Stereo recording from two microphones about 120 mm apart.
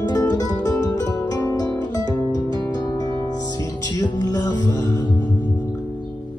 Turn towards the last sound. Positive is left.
turn(degrees=35)  # may be behind; listen again after turning